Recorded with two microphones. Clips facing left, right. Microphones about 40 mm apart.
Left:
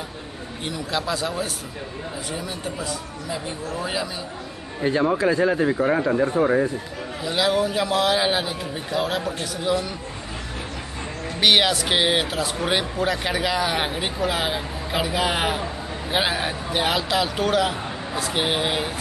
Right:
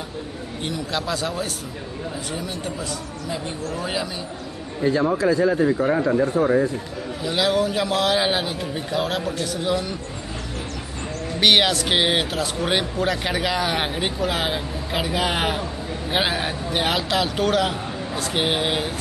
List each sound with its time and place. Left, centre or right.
0.7 s speech: centre
3.8 s speech: centre
4.8 s speech: left
7.2 s speech: centre
11.3 s speech: centre